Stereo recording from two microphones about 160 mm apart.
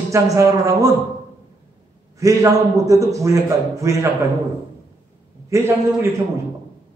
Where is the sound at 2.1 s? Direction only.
20° right (ahead or behind).